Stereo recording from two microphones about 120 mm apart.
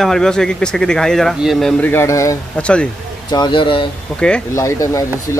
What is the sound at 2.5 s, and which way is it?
Speech, 10° left (ahead or behind).